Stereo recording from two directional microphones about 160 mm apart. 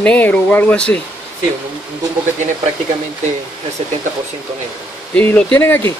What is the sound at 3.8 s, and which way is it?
Speech, 40° right (ahead or behind).